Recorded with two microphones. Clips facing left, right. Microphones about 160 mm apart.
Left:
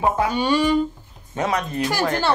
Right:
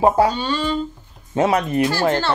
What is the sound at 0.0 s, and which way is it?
Speech, 35° right (ahead or behind).